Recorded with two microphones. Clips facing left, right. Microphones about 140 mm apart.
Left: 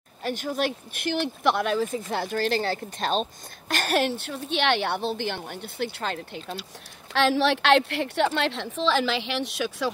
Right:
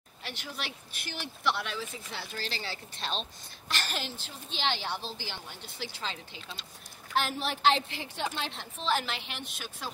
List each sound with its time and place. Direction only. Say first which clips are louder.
0.2 s speech: left 14 dB; 45° left (ahead or behind)
7.1 s a woman's voice: left 10 dB; 90° left